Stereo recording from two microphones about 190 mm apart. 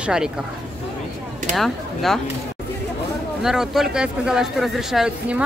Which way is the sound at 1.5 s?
Centre (ahead or behind).